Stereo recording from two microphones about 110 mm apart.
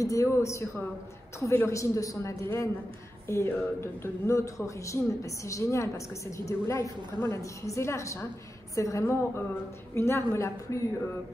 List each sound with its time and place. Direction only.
0.0 s a man's voice: 30° left (ahead or behind)